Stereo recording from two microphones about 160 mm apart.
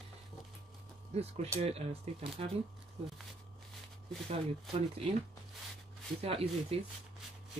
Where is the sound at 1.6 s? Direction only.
40° right (ahead or behind).